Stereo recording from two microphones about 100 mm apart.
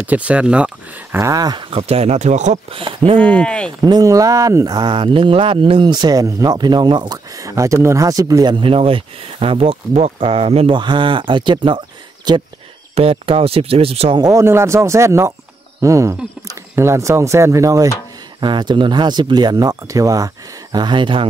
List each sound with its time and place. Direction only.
0.0 s speech: 15° right (ahead or behind)
1.3 s speech: 40° right (ahead or behind)
1.7 s speech: 90° right
2.7 s speech: 60° right (ahead or behind)
3.2 s speech: 10° left (ahead or behind)
3.8 s speech: 40° right (ahead or behind)
8.5 s speech: 65° right (ahead or behind); by 10.7 s 85° right
10.7 s speech: 55° right (ahead or behind)
12.9 s speech: 70° right (ahead or behind)
14.3 s speech: 25° right (ahead or behind)
18.4 s speech: 50° right (ahead or behind); by 20.2 s 35° right (ahead or behind)
20.7 s speech: 50° right (ahead or behind)